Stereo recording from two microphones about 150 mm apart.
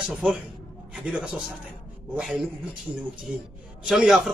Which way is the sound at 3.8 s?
5° right (ahead or behind).